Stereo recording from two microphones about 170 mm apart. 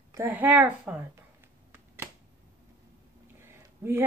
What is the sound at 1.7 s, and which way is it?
Finger snapping, 15° right (ahead or behind).